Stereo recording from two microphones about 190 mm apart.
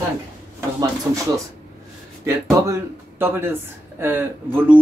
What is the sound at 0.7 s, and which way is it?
Speech, 15° right (ahead or behind).